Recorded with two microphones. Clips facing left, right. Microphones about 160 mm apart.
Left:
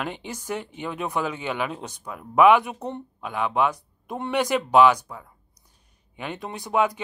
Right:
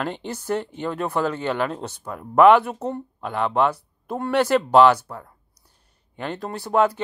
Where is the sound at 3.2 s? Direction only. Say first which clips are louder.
Right 3 dB; 10° left (ahead or behind).